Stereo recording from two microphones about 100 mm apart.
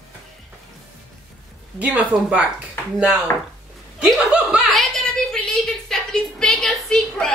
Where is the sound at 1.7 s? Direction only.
15° right (ahead or behind).